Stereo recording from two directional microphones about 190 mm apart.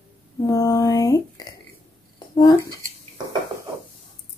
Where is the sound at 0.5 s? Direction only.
20° left (ahead or behind).